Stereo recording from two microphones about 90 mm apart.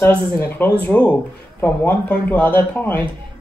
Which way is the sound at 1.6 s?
25° left (ahead or behind).